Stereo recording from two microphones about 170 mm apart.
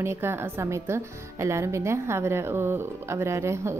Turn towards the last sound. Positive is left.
turn(degrees=-15)  # may be behind; listen again after turning